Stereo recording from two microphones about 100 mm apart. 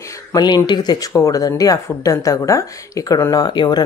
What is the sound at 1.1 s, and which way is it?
Speech, 35° left (ahead or behind).